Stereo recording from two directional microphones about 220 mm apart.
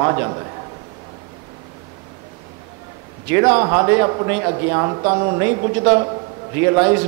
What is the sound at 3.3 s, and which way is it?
A man's voice, 15° right (ahead or behind).